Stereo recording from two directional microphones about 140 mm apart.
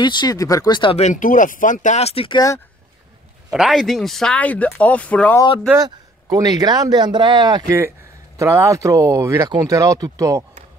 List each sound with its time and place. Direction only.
0.0 s speech: 30° left (ahead or behind)
0.9 s speech: 60° left (ahead or behind); by 2.4 s 40° left (ahead or behind)
3.5 s speech: centre (ahead or behind)
5.8 s speech: 25° right (ahead or behind)
8.4 s speech: 20° right (ahead or behind)